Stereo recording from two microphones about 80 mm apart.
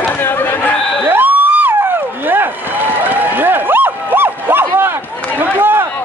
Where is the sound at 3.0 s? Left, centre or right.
Right.